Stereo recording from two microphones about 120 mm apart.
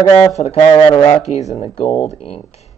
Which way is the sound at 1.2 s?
70° left (ahead or behind).